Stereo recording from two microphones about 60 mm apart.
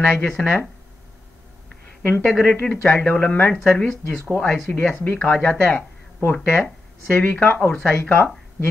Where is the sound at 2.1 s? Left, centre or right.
Left.